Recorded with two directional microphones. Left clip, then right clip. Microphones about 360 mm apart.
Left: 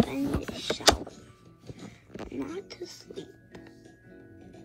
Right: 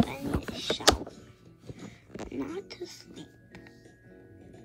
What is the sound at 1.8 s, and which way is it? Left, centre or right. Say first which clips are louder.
Music: even; centre.